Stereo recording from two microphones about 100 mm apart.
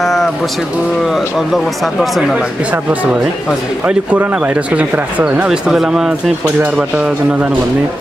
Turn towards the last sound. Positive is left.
turn(degrees=-10)  # may be behind; listen again after turning